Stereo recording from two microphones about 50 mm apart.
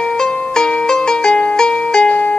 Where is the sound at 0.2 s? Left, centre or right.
Centre.